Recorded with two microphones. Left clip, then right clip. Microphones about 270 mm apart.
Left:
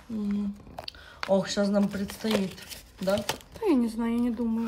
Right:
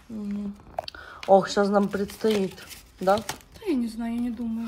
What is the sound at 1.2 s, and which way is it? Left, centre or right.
Speech, right.